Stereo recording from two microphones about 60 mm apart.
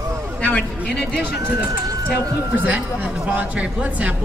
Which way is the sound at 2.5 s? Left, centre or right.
Right.